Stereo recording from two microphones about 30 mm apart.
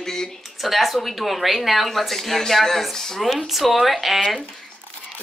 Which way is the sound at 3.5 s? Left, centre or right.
Centre.